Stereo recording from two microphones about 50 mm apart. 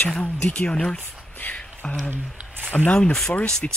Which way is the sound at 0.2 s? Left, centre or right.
Left.